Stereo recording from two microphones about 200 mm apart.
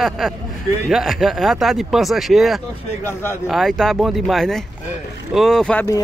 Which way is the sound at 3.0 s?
10° left (ahead or behind).